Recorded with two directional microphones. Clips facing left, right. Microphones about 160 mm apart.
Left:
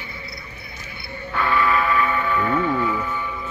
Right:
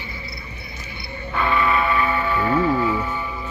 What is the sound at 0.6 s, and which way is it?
Music, 25° right (ahead or behind).